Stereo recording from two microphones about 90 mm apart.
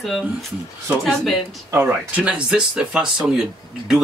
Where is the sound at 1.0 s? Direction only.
Centre (ahead or behind).